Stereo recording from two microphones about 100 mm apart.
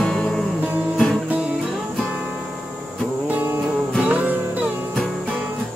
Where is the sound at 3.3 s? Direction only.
20° right (ahead or behind).